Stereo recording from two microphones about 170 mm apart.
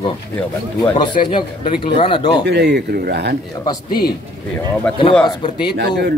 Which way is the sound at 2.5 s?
80° right.